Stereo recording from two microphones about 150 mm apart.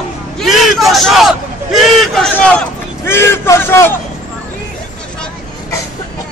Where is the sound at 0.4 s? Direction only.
Centre (ahead or behind).